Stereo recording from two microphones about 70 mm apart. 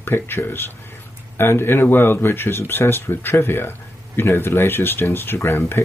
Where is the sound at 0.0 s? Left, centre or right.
Left.